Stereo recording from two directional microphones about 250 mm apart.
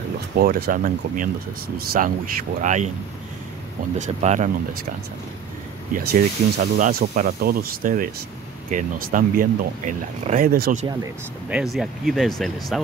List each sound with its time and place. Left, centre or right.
0.4 s speech: right
4.0 s speech: right
5.9 s speech: right
11.4 s speech: centre